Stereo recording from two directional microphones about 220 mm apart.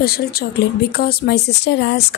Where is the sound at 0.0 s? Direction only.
45° left (ahead or behind).